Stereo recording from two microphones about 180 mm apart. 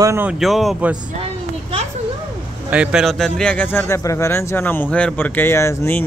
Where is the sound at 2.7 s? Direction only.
5° right (ahead or behind).